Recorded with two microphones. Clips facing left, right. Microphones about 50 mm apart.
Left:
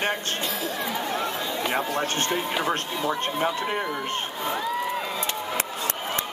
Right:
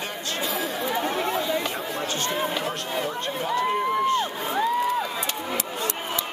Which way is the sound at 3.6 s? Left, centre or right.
Left.